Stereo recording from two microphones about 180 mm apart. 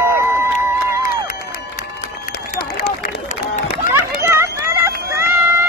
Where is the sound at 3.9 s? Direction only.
15° right (ahead or behind).